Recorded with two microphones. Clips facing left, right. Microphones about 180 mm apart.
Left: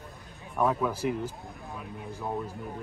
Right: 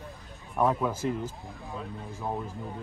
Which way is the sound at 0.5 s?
5° right (ahead or behind).